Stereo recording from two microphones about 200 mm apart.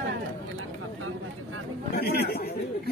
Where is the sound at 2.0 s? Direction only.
50° left (ahead or behind).